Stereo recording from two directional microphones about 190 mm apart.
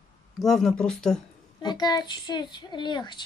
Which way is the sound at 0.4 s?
Centre (ahead or behind).